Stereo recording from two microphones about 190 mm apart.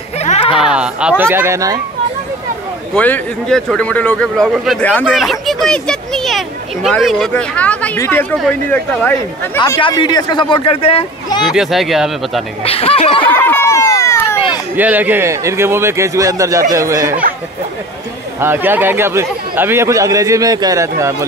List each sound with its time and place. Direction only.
0.2 s a sound: 30° left (ahead or behind)
0.7 s a man's voice: 5° right (ahead or behind)
2.9 s speech: 5° left (ahead or behind)
9.6 s speech: 25° left (ahead or behind)
11.5 s speech: centre (ahead or behind)
12.6 s speech: 30° left (ahead or behind)
13.2 s a sound: 10° left (ahead or behind)
14.8 s a man's voice: 10° right (ahead or behind)
18.4 s a man's voice: 10° right (ahead or behind)